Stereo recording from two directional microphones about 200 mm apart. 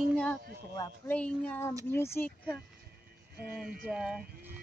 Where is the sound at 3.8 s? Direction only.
Centre (ahead or behind).